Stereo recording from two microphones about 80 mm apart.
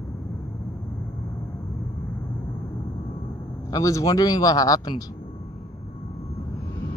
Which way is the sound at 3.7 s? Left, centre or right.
Left.